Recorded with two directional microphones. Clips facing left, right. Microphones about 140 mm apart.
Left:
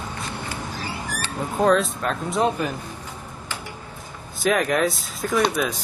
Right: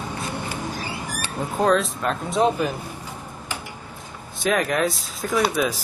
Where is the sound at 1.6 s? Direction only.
Centre (ahead or behind).